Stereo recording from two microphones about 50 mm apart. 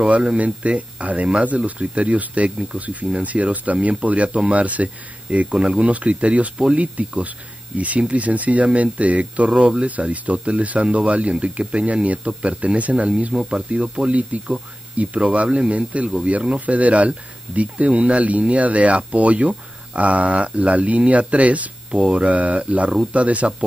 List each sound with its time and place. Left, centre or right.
0.1 s speech: right
9.8 s speech: right